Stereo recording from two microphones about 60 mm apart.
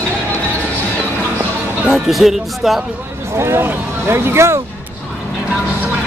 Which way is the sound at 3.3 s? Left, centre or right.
Right.